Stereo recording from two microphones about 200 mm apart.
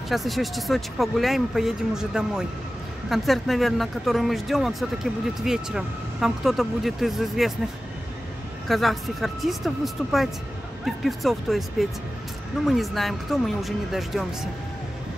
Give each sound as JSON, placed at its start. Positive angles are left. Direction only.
{"t": 0.1, "sound": "speech", "side_deg": 0}
{"t": 8.6, "sound": "speech", "side_deg": 0}
{"t": 11.1, "sound": "speech", "side_deg": 0}